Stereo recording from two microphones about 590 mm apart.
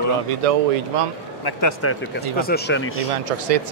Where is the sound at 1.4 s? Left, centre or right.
Left.